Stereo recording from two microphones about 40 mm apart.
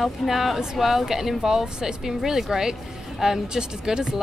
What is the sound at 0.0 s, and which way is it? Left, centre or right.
Speech, centre.